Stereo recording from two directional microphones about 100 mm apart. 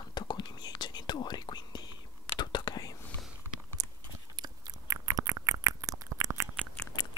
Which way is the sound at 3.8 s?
40° right (ahead or behind).